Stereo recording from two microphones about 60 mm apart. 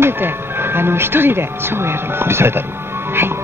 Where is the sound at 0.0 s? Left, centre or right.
Right.